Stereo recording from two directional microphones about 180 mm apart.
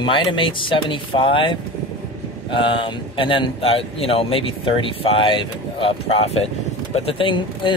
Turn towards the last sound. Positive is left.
turn(degrees=25)  # may be behind; listen again after turning